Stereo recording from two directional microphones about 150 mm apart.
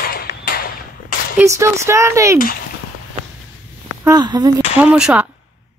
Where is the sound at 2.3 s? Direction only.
80° left.